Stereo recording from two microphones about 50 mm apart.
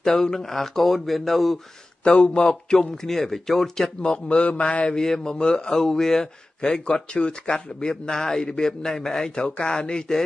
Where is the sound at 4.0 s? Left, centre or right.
Left.